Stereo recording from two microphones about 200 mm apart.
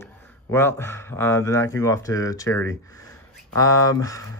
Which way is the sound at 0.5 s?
10° left (ahead or behind).